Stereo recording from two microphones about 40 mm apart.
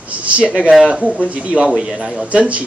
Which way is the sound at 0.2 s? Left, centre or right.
Right.